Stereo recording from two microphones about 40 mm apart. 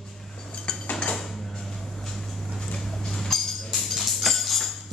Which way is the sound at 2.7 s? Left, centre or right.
Centre.